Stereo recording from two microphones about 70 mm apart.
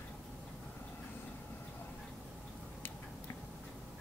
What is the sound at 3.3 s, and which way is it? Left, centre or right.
Tick-tock, left.